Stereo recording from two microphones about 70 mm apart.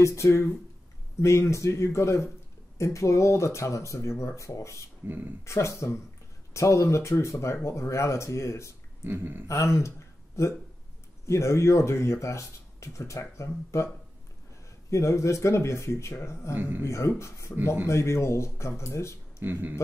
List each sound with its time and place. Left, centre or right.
0.0 s speech: left
5.0 s speech: right
5.4 s speech: left
9.0 s speech: right
9.5 s speech: left
14.9 s speech: left
16.5 s speech: right
16.8 s speech: left
19.4 s speech: right